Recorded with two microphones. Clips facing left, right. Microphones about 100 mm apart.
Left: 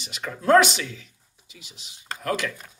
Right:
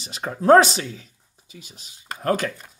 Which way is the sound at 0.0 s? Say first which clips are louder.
Right 5 dB; 40° right (ahead or behind).